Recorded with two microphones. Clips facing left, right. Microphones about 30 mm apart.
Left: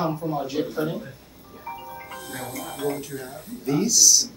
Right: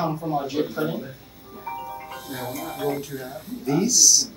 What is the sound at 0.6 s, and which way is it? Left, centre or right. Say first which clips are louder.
Music: right 1 dB; centre.